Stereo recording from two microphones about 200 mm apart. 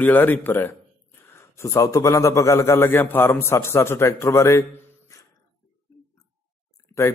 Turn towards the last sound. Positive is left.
turn(degrees=15)  # may be behind; listen again after turning